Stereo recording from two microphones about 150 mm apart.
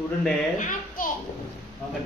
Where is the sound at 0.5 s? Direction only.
60° left (ahead or behind).